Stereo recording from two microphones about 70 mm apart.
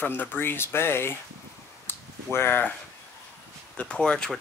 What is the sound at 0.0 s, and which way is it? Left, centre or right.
Speech, left.